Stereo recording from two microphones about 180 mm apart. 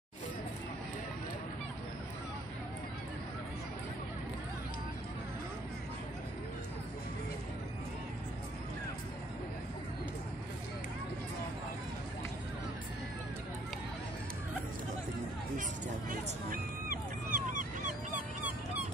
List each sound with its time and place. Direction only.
16.9 s honk: 45° right (ahead or behind)